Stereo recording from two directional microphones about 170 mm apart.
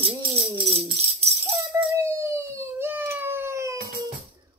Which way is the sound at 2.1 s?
15° right (ahead or behind).